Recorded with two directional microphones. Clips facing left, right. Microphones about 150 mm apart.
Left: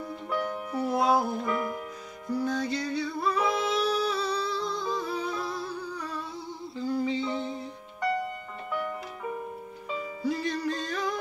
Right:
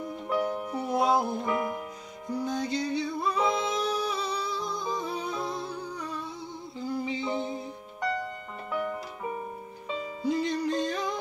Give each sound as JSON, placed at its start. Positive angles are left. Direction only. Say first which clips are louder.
{"t": 0.4, "sound": "music", "louder": "left 1 dB", "side_deg": -20}
{"t": 10.2, "sound": "music", "louder": "right 2 dB", "side_deg": -20}